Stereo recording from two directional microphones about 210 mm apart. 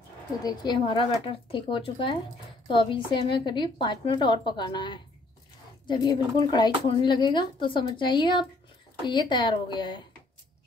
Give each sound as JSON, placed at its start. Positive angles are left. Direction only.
{"t": 0.4, "sound": "speech", "side_deg": 20}